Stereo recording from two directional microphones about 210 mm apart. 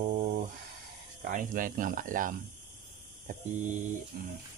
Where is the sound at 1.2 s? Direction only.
40° right (ahead or behind).